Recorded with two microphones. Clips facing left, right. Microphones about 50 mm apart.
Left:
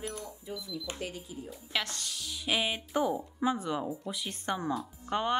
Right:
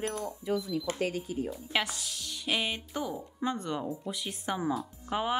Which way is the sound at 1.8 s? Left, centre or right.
Centre.